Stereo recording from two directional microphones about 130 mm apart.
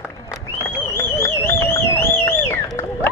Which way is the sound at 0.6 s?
20° left (ahead or behind).